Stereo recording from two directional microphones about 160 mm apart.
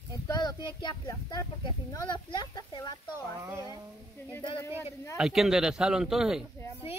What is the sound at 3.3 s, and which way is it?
Speech, 15° right (ahead or behind).